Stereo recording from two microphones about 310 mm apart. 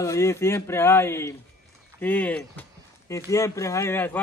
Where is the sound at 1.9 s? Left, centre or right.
Centre.